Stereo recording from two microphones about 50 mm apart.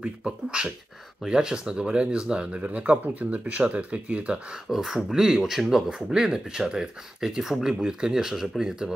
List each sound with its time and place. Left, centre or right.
0.0 s speech: centre
4.6 s speech: centre